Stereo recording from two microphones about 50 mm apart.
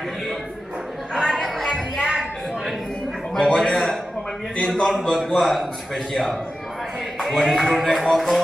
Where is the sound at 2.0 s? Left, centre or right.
Centre.